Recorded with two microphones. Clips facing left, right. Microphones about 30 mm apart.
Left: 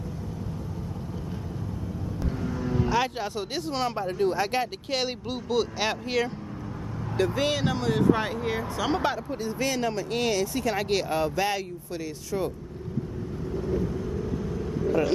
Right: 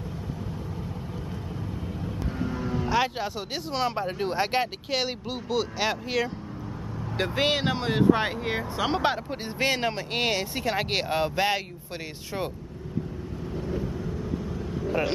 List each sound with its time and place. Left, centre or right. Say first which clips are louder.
2.2 s speech: left 1 dB; centre
4.9 s speech: even; centre
7.2 s speech: even; right
13.5 s vehicle: left 3 dB; centre